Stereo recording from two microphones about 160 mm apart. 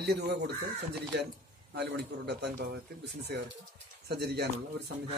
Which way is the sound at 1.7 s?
90° right.